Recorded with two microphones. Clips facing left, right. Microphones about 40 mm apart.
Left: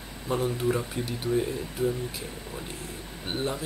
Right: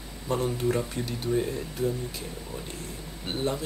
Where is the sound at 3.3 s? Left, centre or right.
Centre.